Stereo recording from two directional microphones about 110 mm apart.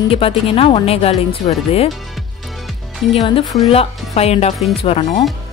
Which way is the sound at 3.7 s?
65° left (ahead or behind).